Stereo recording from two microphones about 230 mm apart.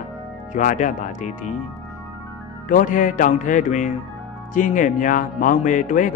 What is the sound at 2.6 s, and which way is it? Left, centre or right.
A man's voice, left.